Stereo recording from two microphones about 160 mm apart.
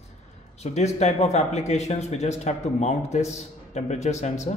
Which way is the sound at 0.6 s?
45° left (ahead or behind).